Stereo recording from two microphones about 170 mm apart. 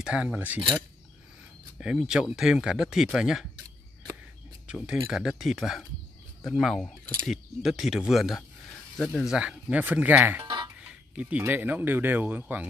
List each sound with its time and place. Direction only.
0.0 s speech: 5° right (ahead or behind)
1.8 s speech: 5° right (ahead or behind)
4.6 s speech: 5° right (ahead or behind)
10.4 s music: 25° right (ahead or behind)
10.9 s speech: 10° right (ahead or behind)